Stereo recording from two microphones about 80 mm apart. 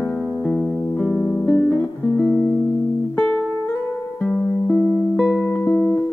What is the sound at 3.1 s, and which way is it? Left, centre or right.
Music, centre.